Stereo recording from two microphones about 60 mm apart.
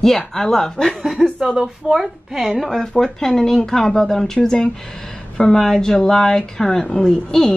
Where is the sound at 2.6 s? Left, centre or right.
Centre.